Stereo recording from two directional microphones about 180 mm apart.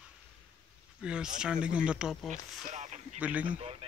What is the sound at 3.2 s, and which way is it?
Speech, 10° right (ahead or behind).